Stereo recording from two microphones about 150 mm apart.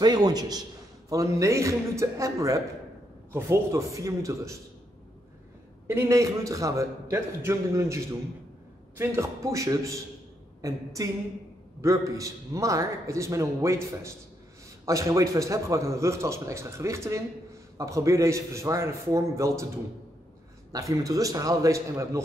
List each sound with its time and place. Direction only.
0.0 s a man's voice: 25° right (ahead or behind)
5.9 s a man's voice: 20° right (ahead or behind)
20.9 s a man's voice: 25° right (ahead or behind)